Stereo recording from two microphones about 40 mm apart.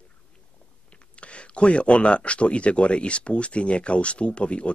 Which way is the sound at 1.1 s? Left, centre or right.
Left.